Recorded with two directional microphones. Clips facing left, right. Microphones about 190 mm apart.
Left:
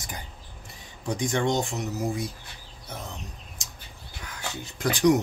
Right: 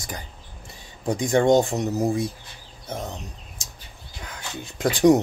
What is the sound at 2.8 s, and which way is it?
Speech, 25° right (ahead or behind).